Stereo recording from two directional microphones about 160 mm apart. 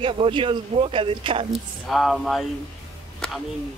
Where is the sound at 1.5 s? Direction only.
Centre (ahead or behind).